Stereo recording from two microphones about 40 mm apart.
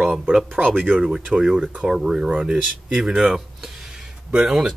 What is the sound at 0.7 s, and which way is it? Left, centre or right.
Speech, right.